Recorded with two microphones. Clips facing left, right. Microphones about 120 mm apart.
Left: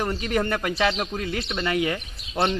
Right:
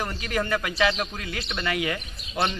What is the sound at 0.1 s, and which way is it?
Speech, 35° left (ahead or behind).